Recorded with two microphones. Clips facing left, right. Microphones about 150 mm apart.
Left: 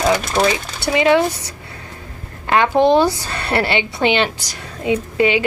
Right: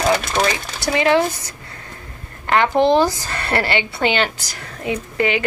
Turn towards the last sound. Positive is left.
turn(degrees=20)  # may be behind; listen again after turning